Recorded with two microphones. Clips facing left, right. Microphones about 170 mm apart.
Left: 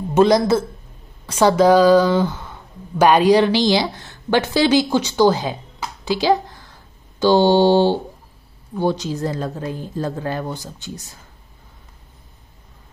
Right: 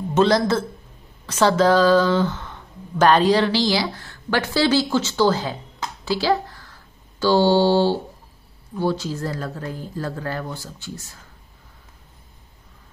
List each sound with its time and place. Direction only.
0.1 s speech: 10° left (ahead or behind)